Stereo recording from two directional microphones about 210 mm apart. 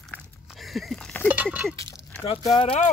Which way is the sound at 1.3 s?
5° right (ahead or behind).